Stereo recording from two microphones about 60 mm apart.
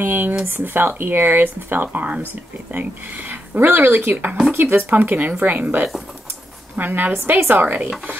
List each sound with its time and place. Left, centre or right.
0.0 s a woman's voice: right